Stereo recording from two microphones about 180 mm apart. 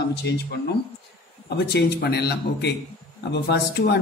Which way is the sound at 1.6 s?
65° left (ahead or behind).